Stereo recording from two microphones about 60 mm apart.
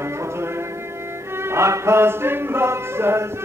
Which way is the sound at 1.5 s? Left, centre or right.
Right.